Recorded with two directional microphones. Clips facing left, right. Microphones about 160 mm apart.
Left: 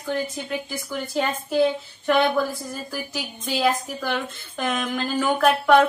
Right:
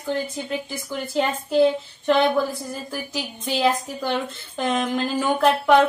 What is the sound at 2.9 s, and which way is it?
Speech, 20° right (ahead or behind).